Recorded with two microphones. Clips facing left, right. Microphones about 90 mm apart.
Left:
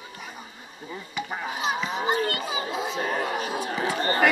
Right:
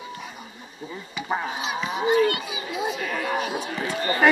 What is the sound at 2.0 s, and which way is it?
Children playing, 35° left (ahead or behind).